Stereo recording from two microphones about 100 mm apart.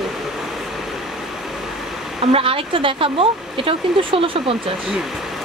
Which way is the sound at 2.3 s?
65° right (ahead or behind).